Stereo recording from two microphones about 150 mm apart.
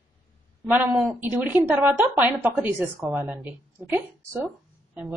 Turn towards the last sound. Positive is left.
turn(degrees=-10)  # may be behind; listen again after turning